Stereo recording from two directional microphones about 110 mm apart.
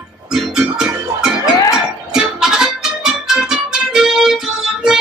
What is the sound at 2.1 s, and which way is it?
Music, 5° right (ahead or behind).